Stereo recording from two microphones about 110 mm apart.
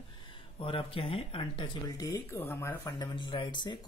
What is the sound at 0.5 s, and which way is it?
Speech, 55° left (ahead or behind).